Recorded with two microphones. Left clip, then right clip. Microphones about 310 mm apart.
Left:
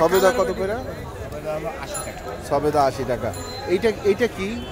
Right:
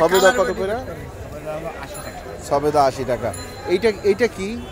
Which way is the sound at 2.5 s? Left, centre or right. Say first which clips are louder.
Right 2 dB; centre.